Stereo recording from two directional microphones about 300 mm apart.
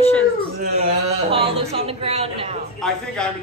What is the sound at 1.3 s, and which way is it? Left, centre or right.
A woman's voice, centre.